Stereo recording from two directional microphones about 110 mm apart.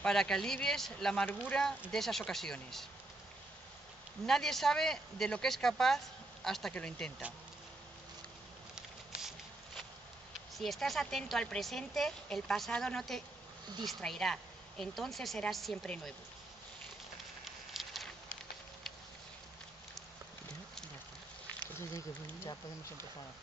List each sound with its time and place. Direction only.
0.0 s speech: 5° left (ahead or behind)
4.3 s speech: 5° left (ahead or behind)
10.5 s speech: centre (ahead or behind)
17.5 s a sound: centre (ahead or behind)
21.7 s speech: 25° left (ahead or behind)